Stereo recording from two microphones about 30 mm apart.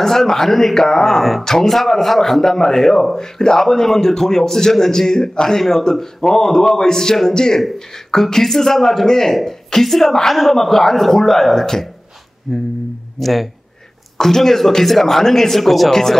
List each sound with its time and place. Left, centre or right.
0.0 s a man's voice: centre
12.5 s speech: centre
14.2 s a man's voice: centre